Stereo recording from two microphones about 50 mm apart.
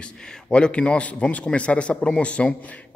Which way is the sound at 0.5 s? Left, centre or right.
Left.